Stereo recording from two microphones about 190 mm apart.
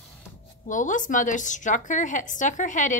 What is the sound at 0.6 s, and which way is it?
A woman's voice, 40° left (ahead or behind).